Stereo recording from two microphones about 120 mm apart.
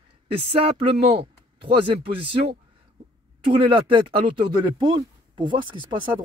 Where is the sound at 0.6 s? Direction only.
50° right (ahead or behind).